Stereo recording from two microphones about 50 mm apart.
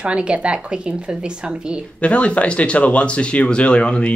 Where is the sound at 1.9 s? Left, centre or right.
Left.